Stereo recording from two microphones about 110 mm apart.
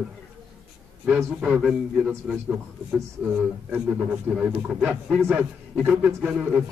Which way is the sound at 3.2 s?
15° right (ahead or behind).